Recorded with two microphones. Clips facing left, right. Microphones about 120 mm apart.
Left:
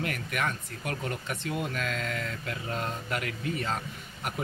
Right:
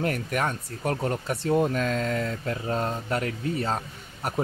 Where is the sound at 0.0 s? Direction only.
35° right (ahead or behind).